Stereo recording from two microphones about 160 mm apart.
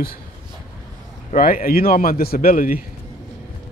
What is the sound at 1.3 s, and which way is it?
Speech, 65° left (ahead or behind).